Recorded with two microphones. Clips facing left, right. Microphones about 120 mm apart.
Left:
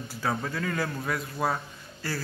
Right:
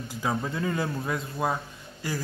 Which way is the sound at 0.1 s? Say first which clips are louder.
Right 1 dB; 15° right (ahead or behind).